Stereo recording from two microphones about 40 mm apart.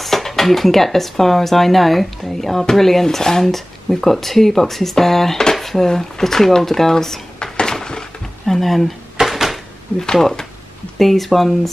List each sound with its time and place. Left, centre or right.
0.0 s speech: centre
7.5 s a sound: centre
8.5 s speech: centre
9.2 s door: centre
10.1 s speech: centre